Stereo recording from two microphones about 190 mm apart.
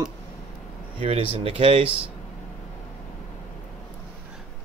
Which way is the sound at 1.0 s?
30° right (ahead or behind).